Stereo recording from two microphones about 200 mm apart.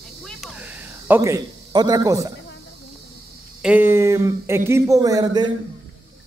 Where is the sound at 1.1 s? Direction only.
15° right (ahead or behind).